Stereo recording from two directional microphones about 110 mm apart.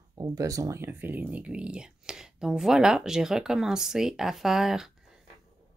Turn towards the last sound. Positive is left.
turn(degrees=-5)  # may be behind; listen again after turning